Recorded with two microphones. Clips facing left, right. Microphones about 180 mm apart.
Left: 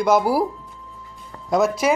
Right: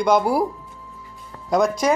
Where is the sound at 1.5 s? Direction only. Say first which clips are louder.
Even; 5° left (ahead or behind).